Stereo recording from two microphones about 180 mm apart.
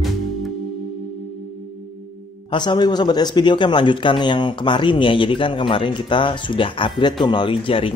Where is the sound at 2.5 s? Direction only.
25° left (ahead or behind).